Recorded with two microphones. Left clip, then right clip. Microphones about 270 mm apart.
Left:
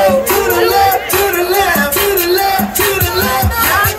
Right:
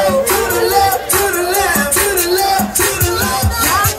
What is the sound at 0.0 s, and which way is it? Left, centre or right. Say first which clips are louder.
Music: left 2 dB; left.